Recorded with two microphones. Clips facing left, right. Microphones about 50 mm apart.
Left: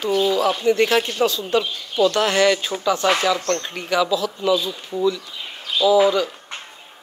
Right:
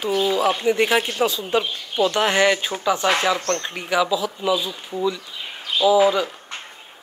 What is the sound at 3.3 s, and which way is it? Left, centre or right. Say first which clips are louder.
Speech: left 1 dB; right.